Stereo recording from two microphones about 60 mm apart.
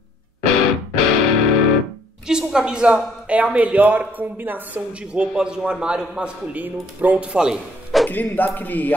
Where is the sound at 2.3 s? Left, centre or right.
Centre; by 4.8 s right.